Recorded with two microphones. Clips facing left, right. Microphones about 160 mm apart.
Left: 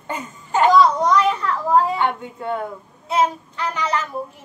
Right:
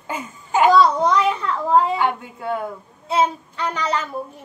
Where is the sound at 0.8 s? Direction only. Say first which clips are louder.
Left 1 dB; 30° right (ahead or behind).